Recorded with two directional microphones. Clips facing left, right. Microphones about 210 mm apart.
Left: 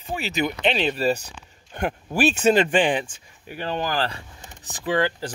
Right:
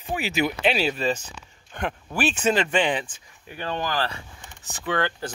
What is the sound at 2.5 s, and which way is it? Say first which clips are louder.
Speech: left 3 dB; 30° left (ahead or behind).